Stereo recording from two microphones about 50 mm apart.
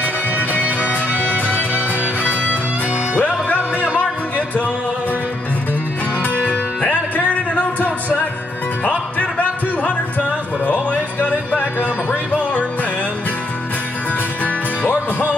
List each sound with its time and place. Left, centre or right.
0.0 s music: left
3.2 s music: left
6.9 s music: left
14.4 s music: left